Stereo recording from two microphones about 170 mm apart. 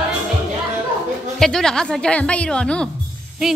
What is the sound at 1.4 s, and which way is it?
Speech, 5° left (ahead or behind).